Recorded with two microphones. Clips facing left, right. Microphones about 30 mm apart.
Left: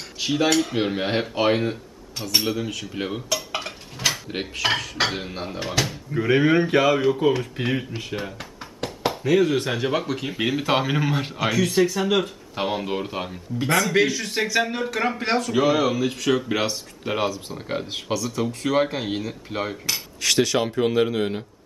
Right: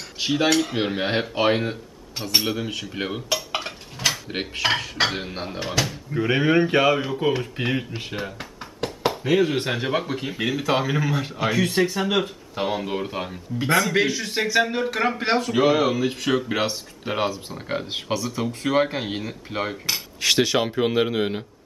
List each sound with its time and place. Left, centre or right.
0.2 s a man's voice: centre
2.8 s dishes: centre
6.2 s a man's voice: centre
8.1 s knock: centre
9.2 s a man's voice: centre
10.2 s speech: centre
11.5 s a man's voice: centre
12.5 s a man's voice: centre